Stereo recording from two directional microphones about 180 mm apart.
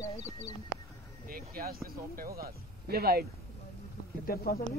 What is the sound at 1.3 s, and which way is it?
Speech, 55° right (ahead or behind).